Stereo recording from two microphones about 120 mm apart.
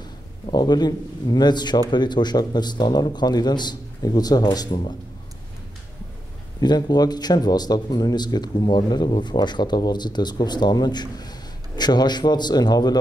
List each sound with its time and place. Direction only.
0.5 s speech: 35° left (ahead or behind)
6.6 s speech: 35° left (ahead or behind)